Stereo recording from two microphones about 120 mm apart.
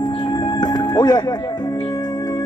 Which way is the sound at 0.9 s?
35° left (ahead or behind).